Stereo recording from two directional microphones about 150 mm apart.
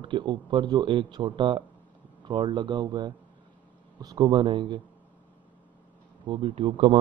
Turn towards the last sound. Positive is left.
turn(degrees=-40)  # may be behind; listen again after turning